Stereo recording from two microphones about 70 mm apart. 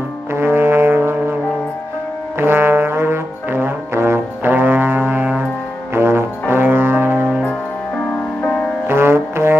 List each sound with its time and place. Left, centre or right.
0.3 s music: right
2.3 s music: right
8.8 s music: right